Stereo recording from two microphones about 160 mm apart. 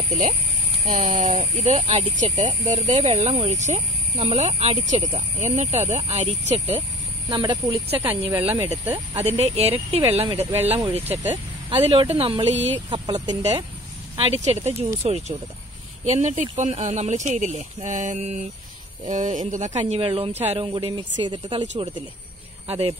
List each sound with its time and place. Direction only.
0.8 s speech: 50° right (ahead or behind)
7.2 s speech: 25° right (ahead or behind)
8.3 s speech: 15° right (ahead or behind)
9.1 s speech: 40° right (ahead or behind)
14.1 s speech: 40° right (ahead or behind)